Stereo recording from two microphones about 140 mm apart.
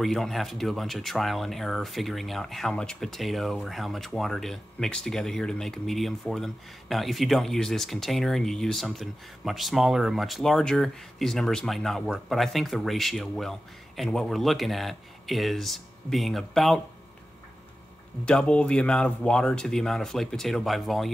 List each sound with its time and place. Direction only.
0.0 s speech: centre (ahead or behind)
18.2 s speech: 5° left (ahead or behind)